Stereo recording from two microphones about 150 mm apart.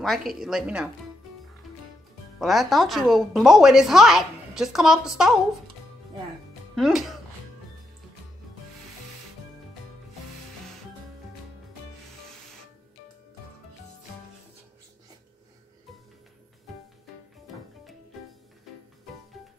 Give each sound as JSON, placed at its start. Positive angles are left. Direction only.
{"t": 0.0, "sound": "a woman's voice", "side_deg": 0}
{"t": 2.3, "sound": "a woman's voice", "side_deg": 0}
{"t": 6.7, "sound": "speech", "side_deg": 0}